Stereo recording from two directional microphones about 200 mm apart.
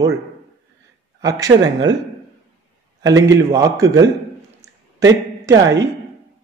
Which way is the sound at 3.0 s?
15° right (ahead or behind).